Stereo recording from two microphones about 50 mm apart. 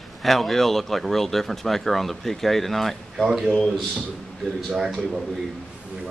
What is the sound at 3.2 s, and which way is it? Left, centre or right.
Speech, centre.